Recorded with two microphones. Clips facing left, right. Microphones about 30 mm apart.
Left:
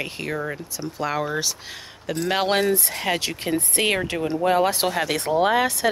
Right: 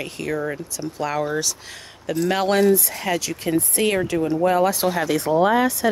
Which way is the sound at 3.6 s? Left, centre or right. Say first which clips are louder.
Right 1 dB; left.